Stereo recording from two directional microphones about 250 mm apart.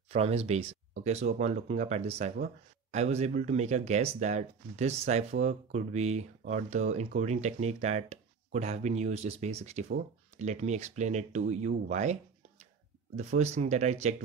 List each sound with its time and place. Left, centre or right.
0.1 s speech: right